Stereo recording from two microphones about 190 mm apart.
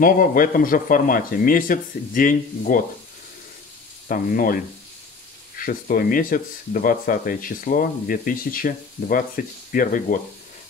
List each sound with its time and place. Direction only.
0.0 s speech: 45° left (ahead or behind)
4.1 s speech: 45° left (ahead or behind)
5.6 s speech: 50° left (ahead or behind)